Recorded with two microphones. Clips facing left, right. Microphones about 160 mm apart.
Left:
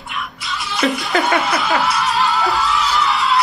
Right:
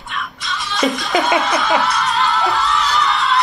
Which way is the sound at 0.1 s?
5° left (ahead or behind).